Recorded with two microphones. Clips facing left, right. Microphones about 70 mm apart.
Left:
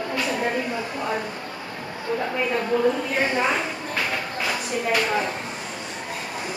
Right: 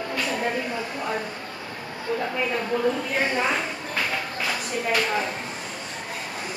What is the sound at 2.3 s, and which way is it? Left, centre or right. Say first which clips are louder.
Speech: left 2 dB; centre.